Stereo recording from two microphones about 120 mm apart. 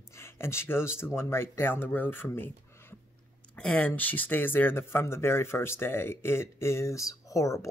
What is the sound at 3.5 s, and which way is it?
Speech, 10° left (ahead or behind).